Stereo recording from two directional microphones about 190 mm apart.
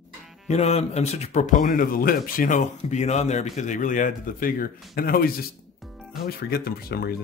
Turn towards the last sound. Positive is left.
turn(degrees=55)  # may be behind; listen again after turning